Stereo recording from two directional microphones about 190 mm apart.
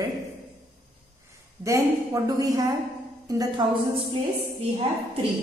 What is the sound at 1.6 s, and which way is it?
A woman's voice, 15° right (ahead or behind).